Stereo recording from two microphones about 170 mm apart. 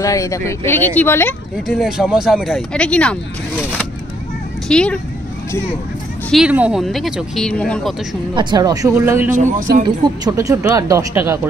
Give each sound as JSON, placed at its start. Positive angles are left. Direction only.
{"t": 0.0, "sound": "speech", "side_deg": 20}
{"t": 1.7, "sound": "speech", "side_deg": 0}
{"t": 6.3, "sound": "speech", "side_deg": -5}
{"t": 8.4, "sound": "speech", "side_deg": -25}
{"t": 9.4, "sound": "speech", "side_deg": -50}
{"t": 10.2, "sound": "speech", "side_deg": -20}